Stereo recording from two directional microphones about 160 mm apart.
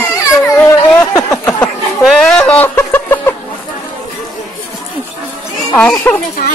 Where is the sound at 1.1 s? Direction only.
20° left (ahead or behind).